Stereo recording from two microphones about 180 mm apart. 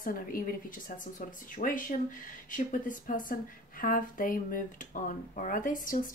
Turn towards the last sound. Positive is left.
turn(degrees=50)  # may be behind; listen again after turning